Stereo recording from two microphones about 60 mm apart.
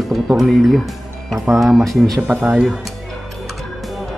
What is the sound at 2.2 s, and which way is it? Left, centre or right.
Speech, right.